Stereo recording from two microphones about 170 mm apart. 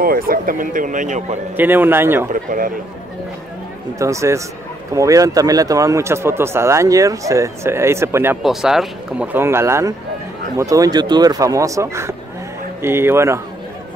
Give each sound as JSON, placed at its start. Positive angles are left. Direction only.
{"t": 0.0, "sound": "speech", "side_deg": -60}
{"t": 1.6, "sound": "speech", "side_deg": -10}
{"t": 4.0, "sound": "speech", "side_deg": -15}
{"t": 8.4, "sound": "speech", "side_deg": 0}